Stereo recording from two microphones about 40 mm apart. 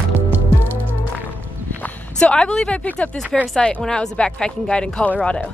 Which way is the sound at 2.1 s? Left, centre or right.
Left.